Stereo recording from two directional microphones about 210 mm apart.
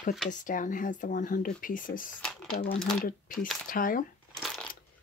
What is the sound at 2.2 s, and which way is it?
Speech, centre (ahead or behind).